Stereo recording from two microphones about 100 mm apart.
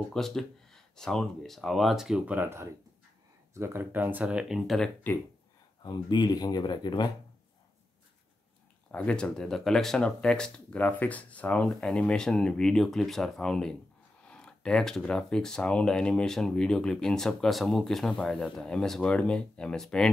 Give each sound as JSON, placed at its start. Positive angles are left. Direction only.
{"t": 0.1, "sound": "speech", "side_deg": 5}
{"t": 5.8, "sound": "speech", "side_deg": 45}
{"t": 8.9, "sound": "speech", "side_deg": 10}